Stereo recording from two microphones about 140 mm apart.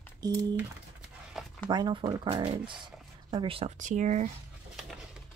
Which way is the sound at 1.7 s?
30° right (ahead or behind).